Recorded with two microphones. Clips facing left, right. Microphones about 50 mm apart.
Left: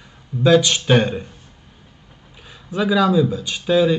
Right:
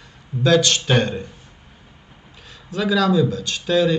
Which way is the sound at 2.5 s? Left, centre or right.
Centre.